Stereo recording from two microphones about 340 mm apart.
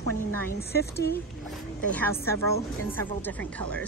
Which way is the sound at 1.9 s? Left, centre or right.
Centre.